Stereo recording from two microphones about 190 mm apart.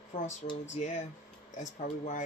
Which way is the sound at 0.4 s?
40° left (ahead or behind).